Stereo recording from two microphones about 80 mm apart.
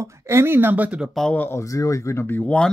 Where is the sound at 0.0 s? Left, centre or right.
Right; by 1.0 s centre.